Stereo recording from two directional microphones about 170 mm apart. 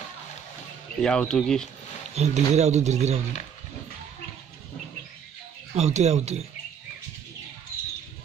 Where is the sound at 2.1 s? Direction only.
40° right (ahead or behind).